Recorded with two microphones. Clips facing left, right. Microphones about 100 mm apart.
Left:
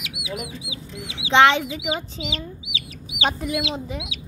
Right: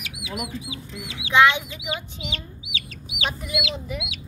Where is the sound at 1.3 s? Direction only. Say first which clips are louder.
Left 2 dB; 85° left.